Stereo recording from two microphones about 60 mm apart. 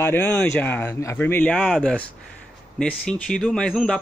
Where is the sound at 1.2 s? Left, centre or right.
Left.